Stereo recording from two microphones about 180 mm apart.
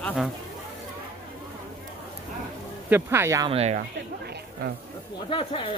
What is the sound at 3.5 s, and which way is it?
Speech, 35° right (ahead or behind).